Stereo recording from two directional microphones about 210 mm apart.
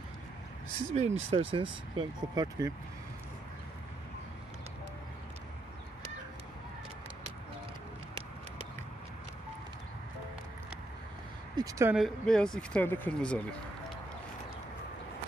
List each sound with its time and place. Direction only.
0.9 s speech: 30° right (ahead or behind)
11.5 s a sound: 15° right (ahead or behind)
11.9 s speech: centre (ahead or behind)